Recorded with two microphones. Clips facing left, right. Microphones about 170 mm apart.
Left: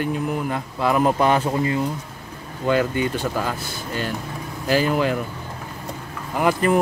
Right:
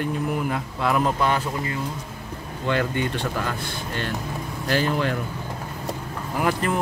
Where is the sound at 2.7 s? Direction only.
5° left (ahead or behind).